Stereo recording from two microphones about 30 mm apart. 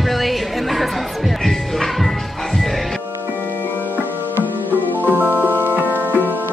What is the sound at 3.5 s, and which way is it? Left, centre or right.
Music, left.